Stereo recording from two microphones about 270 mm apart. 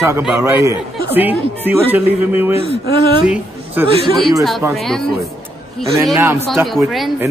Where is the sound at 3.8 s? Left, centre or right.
Centre.